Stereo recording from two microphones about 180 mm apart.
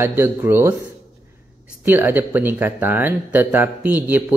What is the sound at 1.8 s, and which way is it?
Speech, 10° right (ahead or behind).